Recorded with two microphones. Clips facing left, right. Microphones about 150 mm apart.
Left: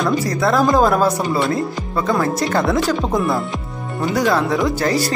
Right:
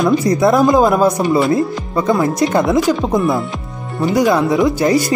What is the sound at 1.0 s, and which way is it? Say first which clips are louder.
Speech: right 4 dB; 20° right (ahead or behind).